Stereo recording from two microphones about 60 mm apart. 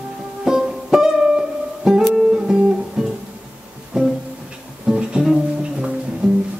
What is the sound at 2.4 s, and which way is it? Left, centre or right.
Music, centre.